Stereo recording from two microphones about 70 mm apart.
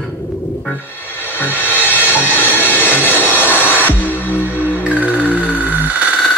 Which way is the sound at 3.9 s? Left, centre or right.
Left.